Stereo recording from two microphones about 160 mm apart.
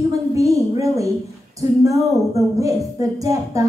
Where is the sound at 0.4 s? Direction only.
20° right (ahead or behind).